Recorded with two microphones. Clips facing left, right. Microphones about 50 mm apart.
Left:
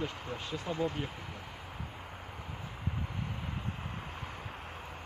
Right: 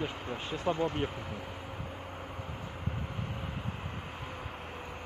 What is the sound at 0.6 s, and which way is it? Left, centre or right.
Speech, right.